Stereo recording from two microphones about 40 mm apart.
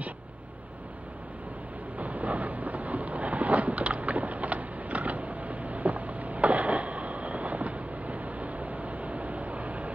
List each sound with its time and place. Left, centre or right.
2.0 s wind noise: right